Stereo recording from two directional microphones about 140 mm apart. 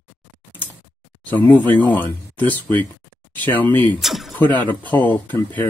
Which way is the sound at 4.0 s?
Centre (ahead or behind).